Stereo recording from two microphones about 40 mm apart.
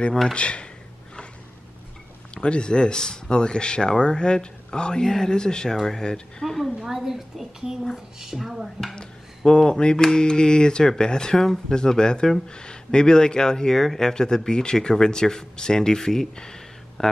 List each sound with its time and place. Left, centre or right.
0.3 s speech: left
2.3 s speech: left
6.4 s a woman's voice: centre
6.8 s a woman's voice: centre
9.5 s speech: left